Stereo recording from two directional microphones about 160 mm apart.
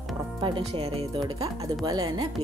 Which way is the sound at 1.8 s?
25° right (ahead or behind).